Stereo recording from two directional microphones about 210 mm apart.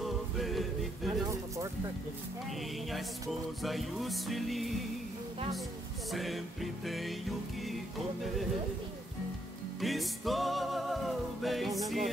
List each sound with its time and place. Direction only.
0.0 s music: centre (ahead or behind)
1.2 s a sound: 15° right (ahead or behind)
2.9 s music: centre (ahead or behind)
6.1 s music: centre (ahead or behind)
9.8 s music: centre (ahead or behind)